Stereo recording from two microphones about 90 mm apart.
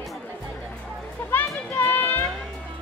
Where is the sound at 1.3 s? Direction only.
25° left (ahead or behind).